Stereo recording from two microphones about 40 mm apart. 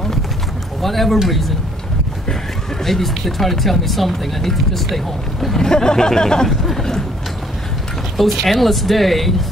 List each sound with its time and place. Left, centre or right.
0.8 s speech: centre
2.8 s speech: centre
8.2 s speech: centre